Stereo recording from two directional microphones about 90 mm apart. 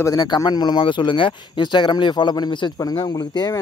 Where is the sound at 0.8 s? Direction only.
65° left (ahead or behind).